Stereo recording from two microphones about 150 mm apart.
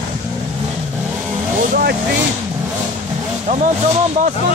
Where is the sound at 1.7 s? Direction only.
90° right.